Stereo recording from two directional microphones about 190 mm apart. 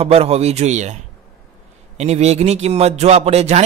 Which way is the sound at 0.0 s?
30° right (ahead or behind).